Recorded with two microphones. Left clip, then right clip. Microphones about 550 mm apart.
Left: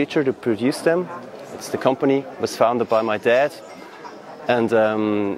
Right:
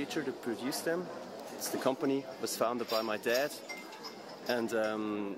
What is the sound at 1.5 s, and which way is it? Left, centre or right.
A man's voice, left.